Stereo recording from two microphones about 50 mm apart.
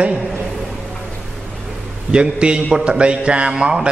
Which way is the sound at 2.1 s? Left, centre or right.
Centre.